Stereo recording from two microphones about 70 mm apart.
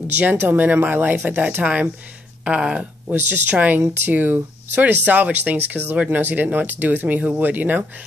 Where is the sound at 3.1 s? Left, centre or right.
Right.